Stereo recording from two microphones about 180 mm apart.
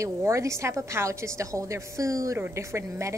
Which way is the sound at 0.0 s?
15° right (ahead or behind).